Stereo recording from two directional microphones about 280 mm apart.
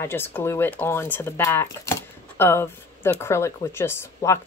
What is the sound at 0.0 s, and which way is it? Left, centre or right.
Speech, centre.